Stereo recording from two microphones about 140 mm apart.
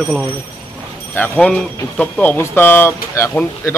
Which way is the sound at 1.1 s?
10° left (ahead or behind).